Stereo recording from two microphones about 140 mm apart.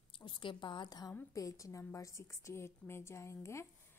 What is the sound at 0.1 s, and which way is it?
A woman's voice, 35° left (ahead or behind).